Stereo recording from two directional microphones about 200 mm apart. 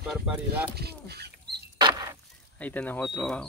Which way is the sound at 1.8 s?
20° right (ahead or behind).